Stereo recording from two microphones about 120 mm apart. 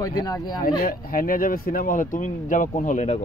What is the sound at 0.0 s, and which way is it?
Speech, 35° left (ahead or behind).